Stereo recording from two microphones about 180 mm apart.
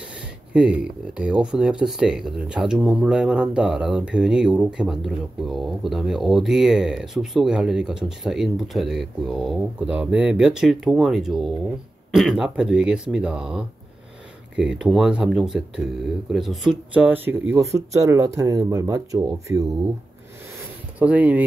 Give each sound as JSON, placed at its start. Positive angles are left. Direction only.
{"t": 0.5, "sound": "speech", "side_deg": -5}
{"t": 21.0, "sound": "speech", "side_deg": -10}